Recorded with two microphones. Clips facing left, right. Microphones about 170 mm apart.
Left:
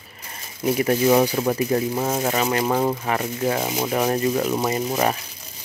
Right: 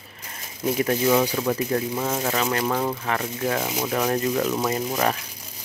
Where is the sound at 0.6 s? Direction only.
10° left (ahead or behind).